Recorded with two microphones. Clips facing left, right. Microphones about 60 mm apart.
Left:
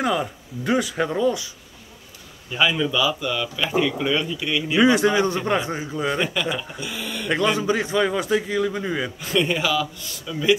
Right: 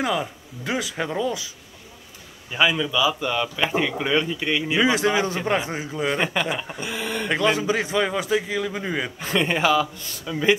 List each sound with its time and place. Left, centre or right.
0.0 s speech: centre
2.5 s a man's voice: centre
3.2 s a man's voice: right
6.5 s speech: right
7.4 s speech: centre
8.7 s a man's voice: centre
9.2 s speech: right